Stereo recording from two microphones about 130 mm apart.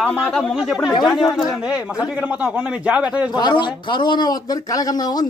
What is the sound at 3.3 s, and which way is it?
A man's voice, 35° left (ahead or behind).